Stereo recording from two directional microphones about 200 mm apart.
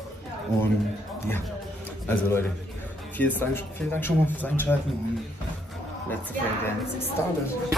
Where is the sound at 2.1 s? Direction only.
10° left (ahead or behind).